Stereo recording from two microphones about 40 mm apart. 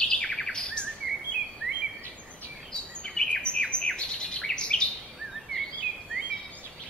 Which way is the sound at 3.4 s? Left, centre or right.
Left.